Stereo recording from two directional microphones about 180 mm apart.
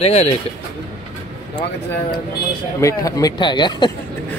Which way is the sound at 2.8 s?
20° left (ahead or behind).